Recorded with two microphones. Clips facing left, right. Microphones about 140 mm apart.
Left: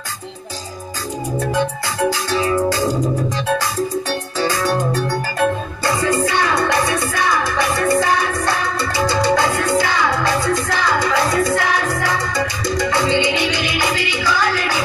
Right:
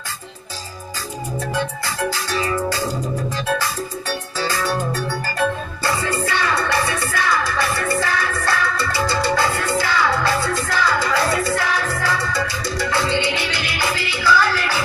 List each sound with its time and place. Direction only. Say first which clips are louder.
1.5 s music: left 3 dB; 15° left (ahead or behind)
4.4 s music: left 4 dB; 15° left (ahead or behind)